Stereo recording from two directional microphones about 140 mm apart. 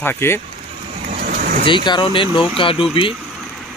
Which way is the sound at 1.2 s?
90° right.